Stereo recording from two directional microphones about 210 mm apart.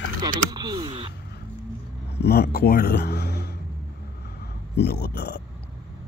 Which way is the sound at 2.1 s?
50° left (ahead or behind).